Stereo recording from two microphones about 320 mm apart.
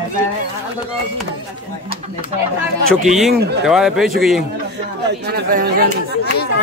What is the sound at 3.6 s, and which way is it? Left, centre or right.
Speech, centre.